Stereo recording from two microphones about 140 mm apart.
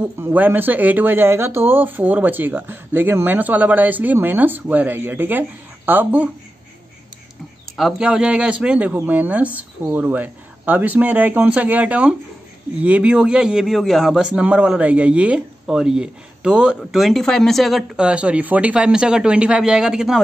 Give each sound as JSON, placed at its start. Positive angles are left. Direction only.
{"t": 0.0, "sound": "speech", "side_deg": -15}
{"t": 7.7, "sound": "a man's voice", "side_deg": -5}